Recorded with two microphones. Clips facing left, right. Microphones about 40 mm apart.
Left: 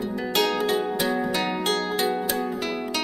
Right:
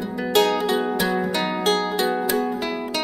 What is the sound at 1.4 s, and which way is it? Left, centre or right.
Music, right.